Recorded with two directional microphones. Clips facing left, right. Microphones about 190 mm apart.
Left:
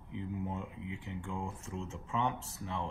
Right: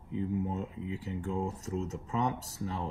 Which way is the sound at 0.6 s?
40° right (ahead or behind).